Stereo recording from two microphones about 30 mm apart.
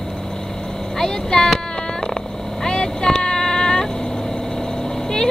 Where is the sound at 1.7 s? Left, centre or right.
Left.